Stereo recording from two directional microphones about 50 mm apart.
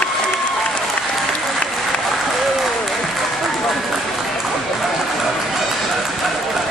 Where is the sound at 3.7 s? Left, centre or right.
Centre.